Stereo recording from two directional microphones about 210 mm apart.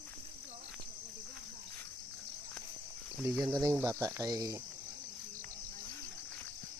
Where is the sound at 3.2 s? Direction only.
5° right (ahead or behind).